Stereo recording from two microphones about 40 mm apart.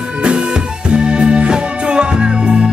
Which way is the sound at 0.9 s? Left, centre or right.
Right.